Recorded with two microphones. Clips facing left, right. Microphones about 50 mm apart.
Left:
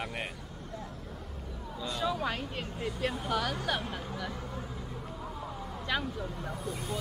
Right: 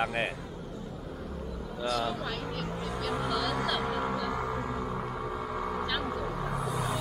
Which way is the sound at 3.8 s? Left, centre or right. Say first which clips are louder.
Right 7 dB; right.